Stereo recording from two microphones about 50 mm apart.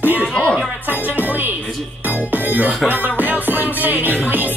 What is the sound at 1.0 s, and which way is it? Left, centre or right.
Music, right.